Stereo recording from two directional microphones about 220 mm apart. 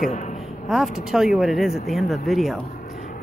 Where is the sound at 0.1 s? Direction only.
35° left (ahead or behind).